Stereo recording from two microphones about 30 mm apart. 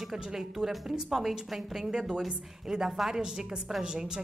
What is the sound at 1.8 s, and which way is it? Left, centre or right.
A woman's voice, right.